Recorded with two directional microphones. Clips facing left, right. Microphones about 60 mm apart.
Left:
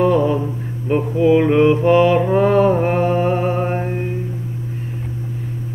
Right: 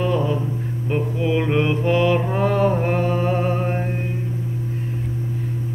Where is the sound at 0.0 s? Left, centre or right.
Left.